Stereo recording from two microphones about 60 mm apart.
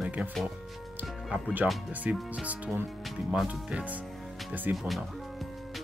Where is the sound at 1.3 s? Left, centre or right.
Right.